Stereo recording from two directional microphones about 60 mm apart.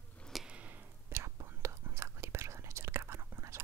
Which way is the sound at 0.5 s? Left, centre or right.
Right.